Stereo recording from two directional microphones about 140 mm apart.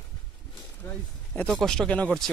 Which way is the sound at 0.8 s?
10° left (ahead or behind).